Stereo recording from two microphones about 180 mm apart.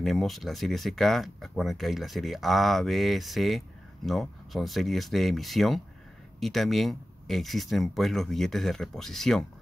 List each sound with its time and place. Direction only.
0.0 s speech: centre (ahead or behind)